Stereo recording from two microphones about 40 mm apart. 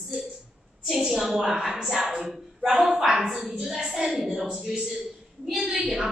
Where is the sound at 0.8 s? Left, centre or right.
Centre.